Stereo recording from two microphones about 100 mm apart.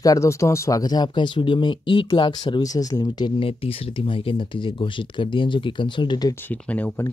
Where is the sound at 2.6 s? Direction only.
40° left (ahead or behind).